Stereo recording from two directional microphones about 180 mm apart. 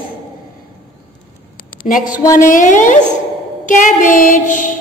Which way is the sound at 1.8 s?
50° left (ahead or behind).